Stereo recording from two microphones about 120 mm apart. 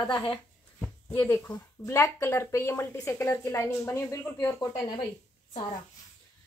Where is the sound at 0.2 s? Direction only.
5° left (ahead or behind).